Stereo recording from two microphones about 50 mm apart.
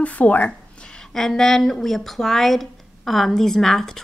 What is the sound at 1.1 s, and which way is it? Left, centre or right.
Speech, centre.